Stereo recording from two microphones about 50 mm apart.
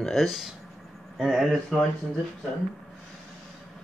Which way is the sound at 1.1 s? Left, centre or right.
Centre.